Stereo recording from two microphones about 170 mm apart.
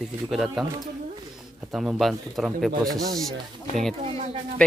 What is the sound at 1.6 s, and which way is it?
Speech, 5° right (ahead or behind).